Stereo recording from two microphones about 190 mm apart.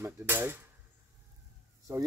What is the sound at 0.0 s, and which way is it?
Speech, 10° right (ahead or behind).